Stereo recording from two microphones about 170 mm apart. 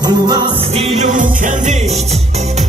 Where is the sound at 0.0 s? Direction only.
25° right (ahead or behind).